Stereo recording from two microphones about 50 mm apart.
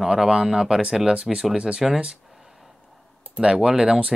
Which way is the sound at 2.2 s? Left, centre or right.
Centre.